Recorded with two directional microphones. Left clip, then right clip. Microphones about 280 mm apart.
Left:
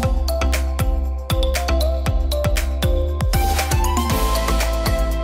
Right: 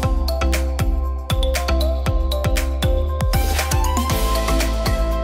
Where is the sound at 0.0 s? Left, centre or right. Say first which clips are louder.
Even; centre.